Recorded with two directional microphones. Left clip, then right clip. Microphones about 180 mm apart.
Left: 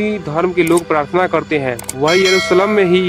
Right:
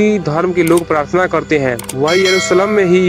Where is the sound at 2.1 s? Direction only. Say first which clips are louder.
Even; centre (ahead or behind).